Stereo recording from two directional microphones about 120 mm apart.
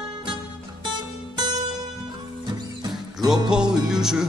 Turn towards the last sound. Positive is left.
turn(degrees=-5)  # may be behind; listen again after turning